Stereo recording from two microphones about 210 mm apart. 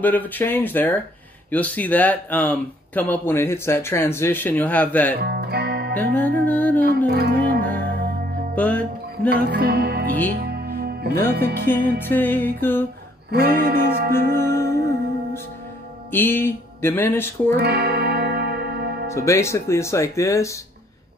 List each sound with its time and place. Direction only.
0.0 s speech: 10° left (ahead or behind)
5.3 s music: 50° right (ahead or behind)
6.1 s speech: 10° left (ahead or behind)
7.1 s music: 50° right (ahead or behind)
8.5 s speech: 5° left (ahead or behind)
9.3 s music: 50° right (ahead or behind)
11.6 s speech: 10° left (ahead or behind)
13.3 s music: 45° right (ahead or behind)
14.3 s music: 10° left (ahead or behind)
16.1 s music: 10° left (ahead or behind)
17.5 s music: 50° right (ahead or behind)
19.0 s speech: 15° left (ahead or behind)